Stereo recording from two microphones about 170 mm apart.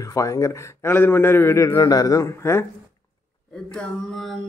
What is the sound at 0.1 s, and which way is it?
A man's voice, 20° left (ahead or behind).